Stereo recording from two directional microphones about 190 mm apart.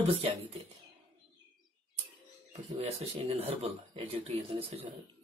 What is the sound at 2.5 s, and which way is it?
Speech, 35° right (ahead or behind).